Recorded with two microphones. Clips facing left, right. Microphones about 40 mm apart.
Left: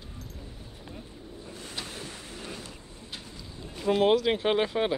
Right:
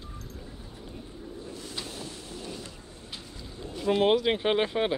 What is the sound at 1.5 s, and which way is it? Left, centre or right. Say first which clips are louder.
Vehicle: left 2 dB; left.